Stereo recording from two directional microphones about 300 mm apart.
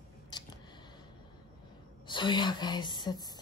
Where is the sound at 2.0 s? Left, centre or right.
Centre.